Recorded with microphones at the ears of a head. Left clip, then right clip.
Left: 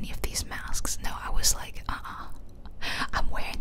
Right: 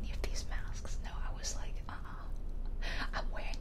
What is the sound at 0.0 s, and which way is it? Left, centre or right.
Whispering, left.